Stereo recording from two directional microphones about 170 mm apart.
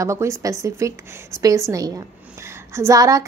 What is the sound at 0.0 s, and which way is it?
A woman's voice, 15° right (ahead or behind).